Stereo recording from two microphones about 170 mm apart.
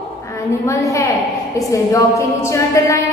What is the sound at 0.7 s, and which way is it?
Speech, 20° left (ahead or behind).